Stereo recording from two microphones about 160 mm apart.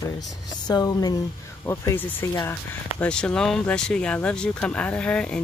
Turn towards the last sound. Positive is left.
turn(degrees=5)  # may be behind; listen again after turning